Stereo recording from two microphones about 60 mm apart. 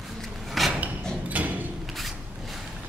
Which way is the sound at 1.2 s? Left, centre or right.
Right.